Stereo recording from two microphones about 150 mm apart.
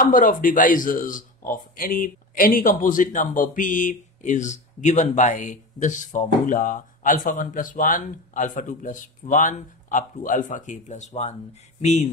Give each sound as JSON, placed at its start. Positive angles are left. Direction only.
{"t": 0.1, "sound": "speech", "side_deg": 65}